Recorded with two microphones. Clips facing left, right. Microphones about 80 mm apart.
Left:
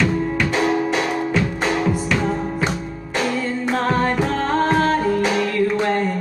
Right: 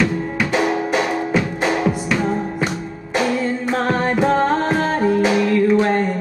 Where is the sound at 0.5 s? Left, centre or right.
Centre.